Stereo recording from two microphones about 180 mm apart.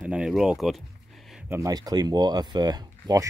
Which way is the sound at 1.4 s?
15° right (ahead or behind).